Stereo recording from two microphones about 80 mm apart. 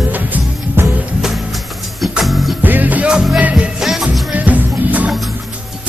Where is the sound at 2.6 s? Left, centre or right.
Right; by 4.0 s centre.